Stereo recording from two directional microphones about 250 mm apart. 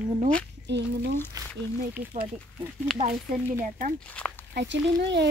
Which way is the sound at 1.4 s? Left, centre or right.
Centre.